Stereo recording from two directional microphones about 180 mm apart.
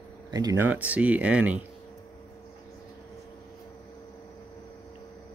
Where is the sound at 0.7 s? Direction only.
10° right (ahead or behind).